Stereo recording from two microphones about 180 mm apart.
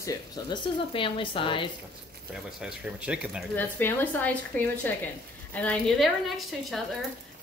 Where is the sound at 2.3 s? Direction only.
5° right (ahead or behind).